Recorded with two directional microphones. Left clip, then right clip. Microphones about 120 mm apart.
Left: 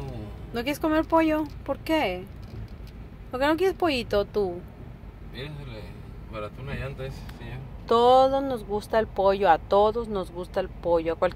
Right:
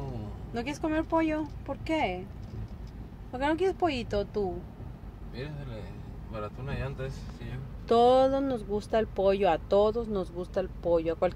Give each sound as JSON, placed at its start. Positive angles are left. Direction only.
{"t": 0.5, "sound": "speech", "side_deg": 15}
{"t": 3.3, "sound": "speech", "side_deg": 5}
{"t": 6.4, "sound": "speech", "side_deg": -10}
{"t": 7.8, "sound": "speech", "side_deg": -30}